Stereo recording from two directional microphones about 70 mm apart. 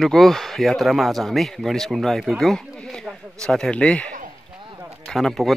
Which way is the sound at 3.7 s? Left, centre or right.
Centre.